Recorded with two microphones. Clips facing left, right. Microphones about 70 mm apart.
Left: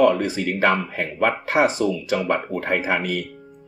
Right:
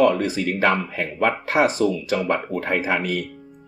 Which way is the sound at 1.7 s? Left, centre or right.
Right.